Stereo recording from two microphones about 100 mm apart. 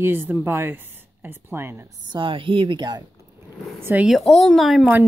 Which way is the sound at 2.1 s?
55° right (ahead or behind).